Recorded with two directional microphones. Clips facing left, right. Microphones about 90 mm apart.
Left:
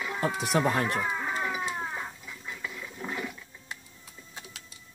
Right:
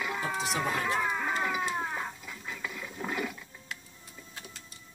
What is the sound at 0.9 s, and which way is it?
Speech, centre (ahead or behind).